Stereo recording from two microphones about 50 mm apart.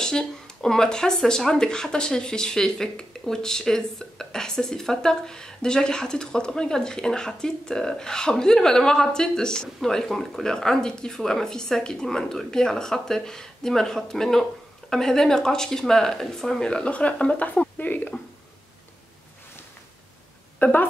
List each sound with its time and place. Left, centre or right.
0.0 s speech: centre
17.7 s a sound: left
20.5 s speech: left